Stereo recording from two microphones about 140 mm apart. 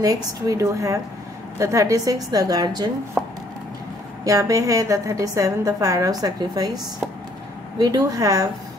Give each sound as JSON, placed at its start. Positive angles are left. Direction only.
{"t": 0.0, "sound": "a woman's voice", "side_deg": -25}
{"t": 3.2, "sound": "chopping", "side_deg": -5}
{"t": 4.2, "sound": "a woman's voice", "side_deg": -25}
{"t": 7.8, "sound": "a woman's voice", "side_deg": -25}